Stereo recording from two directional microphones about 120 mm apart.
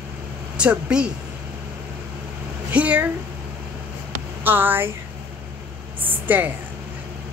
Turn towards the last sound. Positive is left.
turn(degrees=-15)  # may be behind; listen again after turning